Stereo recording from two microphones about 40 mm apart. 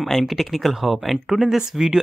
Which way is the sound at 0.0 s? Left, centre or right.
Centre.